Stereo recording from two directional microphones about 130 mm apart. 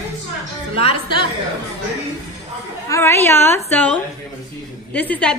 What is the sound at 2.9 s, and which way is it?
A woman's voice, 20° left (ahead or behind).